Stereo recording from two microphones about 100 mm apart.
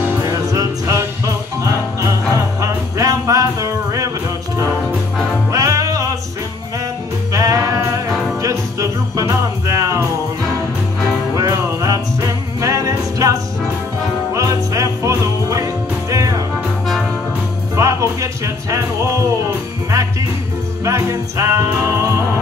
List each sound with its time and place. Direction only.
0.2 s music: 35° right (ahead or behind)
5.5 s music: 35° right (ahead or behind)
7.3 s a sound: 35° right (ahead or behind)
8.4 s music: 35° right (ahead or behind)
11.3 s music: 35° right (ahead or behind)
17.7 s music: 30° right (ahead or behind)